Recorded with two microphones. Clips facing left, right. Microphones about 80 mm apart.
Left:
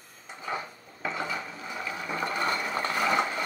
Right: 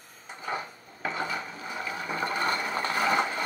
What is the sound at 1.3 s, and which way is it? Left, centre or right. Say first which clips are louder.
Ratchet: right 1 dB; centre.